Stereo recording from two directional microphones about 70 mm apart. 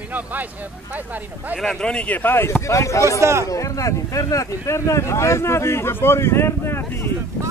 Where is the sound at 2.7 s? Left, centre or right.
Left.